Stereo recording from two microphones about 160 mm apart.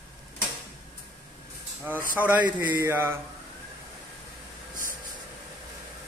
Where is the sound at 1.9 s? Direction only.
10° right (ahead or behind).